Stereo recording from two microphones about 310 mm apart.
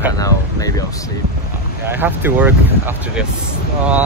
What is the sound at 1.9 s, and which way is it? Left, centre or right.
Speech, centre.